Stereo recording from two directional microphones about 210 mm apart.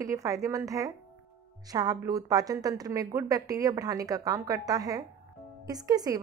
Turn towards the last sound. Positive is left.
turn(degrees=-15)  # may be behind; listen again after turning